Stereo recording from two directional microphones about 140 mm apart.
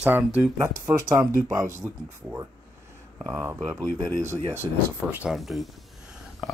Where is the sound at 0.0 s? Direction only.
10° right (ahead or behind).